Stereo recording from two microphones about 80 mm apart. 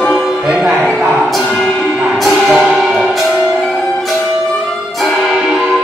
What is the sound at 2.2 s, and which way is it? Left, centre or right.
Music, centre.